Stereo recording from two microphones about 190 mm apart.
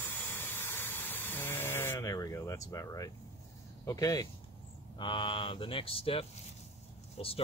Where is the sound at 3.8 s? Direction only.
20° left (ahead or behind).